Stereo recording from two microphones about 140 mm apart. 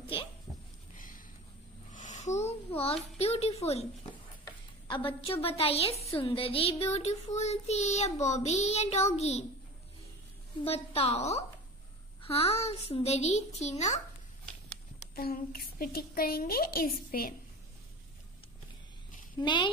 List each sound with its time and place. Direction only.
0.0 s speech: 40° left (ahead or behind)
0.9 s a sound: 75° left (ahead or behind)
1.9 s a child's voice: 60° left (ahead or behind)
4.8 s child singing: 40° left (ahead or behind)
10.6 s child singing: 45° left (ahead or behind)
15.1 s a woman's voice: 90° left
19.4 s speech: 35° left (ahead or behind)